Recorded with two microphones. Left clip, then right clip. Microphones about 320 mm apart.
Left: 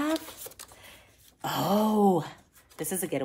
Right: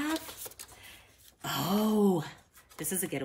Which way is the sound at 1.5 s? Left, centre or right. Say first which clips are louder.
Left 5 dB; centre.